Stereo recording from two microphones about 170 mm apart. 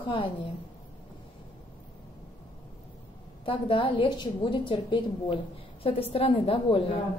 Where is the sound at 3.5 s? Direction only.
30° left (ahead or behind).